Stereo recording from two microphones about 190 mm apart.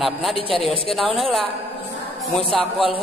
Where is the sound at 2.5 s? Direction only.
Centre (ahead or behind).